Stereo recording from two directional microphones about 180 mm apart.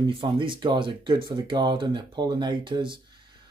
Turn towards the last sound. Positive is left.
turn(degrees=-25)  # may be behind; listen again after turning